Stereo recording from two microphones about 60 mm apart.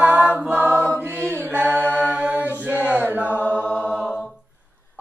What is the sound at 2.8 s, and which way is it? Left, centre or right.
Music, right.